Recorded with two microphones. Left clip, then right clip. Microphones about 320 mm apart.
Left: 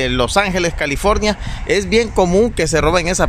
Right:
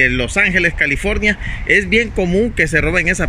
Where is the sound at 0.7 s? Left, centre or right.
Left.